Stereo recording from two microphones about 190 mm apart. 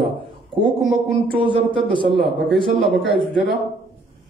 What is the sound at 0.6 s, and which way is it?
Speech, 5° left (ahead or behind).